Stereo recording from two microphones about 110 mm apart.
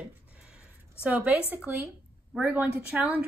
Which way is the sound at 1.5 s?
15° right (ahead or behind).